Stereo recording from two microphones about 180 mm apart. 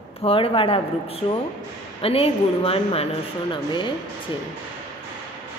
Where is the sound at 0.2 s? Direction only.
30° left (ahead or behind).